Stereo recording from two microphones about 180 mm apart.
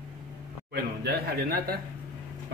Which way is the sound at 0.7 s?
60° right (ahead or behind).